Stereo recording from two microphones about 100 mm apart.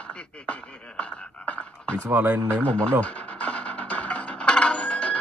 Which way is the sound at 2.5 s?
10° left (ahead or behind).